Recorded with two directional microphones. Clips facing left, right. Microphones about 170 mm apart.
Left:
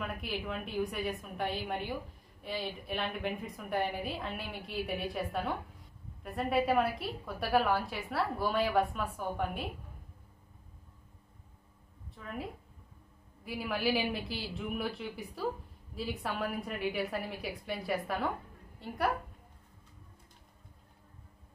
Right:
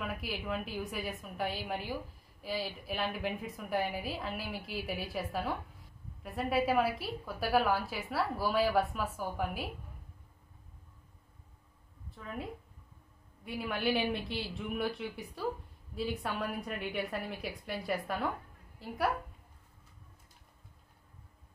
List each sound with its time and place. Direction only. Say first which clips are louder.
0.0 s a woman's voice: left 1 dB; centre (ahead or behind)
12.1 s a woman's voice: even; centre (ahead or behind)